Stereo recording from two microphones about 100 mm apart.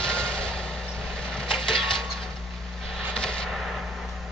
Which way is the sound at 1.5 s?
5° left (ahead or behind).